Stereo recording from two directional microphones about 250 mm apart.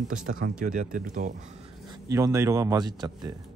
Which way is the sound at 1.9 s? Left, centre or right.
Centre.